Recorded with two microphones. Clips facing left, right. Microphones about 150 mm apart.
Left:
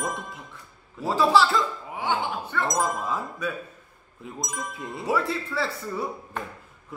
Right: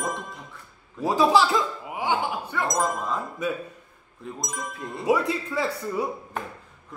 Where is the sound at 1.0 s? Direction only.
15° right (ahead or behind).